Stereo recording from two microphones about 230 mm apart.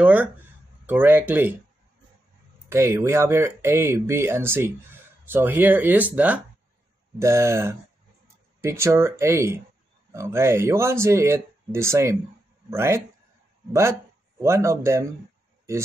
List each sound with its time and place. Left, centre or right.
0.0 s speech: centre
2.7 s speech: centre
14.4 s speech: centre